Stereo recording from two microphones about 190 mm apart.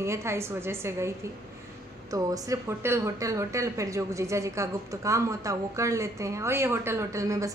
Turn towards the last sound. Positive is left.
turn(degrees=-15)  # may be behind; listen again after turning